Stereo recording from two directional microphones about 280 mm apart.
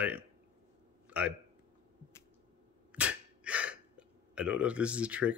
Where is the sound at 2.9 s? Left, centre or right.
Centre.